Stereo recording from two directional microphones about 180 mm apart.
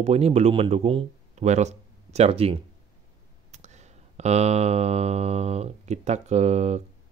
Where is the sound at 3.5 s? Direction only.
40° right (ahead or behind).